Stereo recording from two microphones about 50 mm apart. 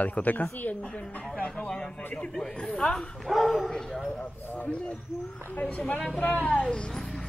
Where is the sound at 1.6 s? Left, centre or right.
Centre.